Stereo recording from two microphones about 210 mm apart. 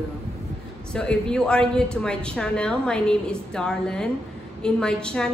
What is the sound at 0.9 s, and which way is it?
A woman's voice, 5° left (ahead or behind).